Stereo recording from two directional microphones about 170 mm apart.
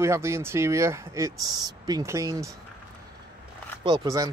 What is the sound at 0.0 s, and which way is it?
Speech, 15° right (ahead or behind).